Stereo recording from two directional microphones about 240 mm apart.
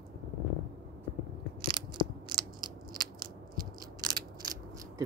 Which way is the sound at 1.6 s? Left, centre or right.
Centre.